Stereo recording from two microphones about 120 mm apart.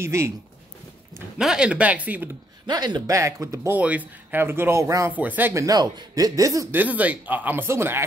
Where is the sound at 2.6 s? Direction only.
35° right (ahead or behind).